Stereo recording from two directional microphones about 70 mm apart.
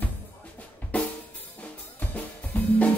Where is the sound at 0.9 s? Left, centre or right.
Centre.